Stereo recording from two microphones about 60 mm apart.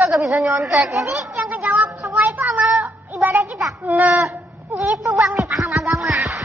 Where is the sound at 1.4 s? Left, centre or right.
Right.